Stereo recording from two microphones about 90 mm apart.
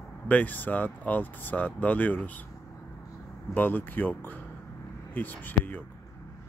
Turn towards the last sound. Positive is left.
turn(degrees=20)  # may be behind; listen again after turning